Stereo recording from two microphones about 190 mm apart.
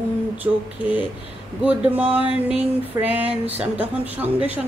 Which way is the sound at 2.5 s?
10° right (ahead or behind).